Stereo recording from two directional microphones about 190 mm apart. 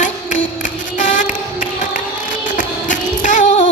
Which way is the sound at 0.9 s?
40° left (ahead or behind).